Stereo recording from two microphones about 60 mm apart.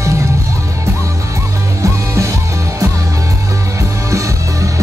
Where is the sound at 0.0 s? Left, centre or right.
Right.